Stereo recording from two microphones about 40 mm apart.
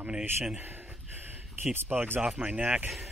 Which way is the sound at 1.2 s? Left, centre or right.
Right.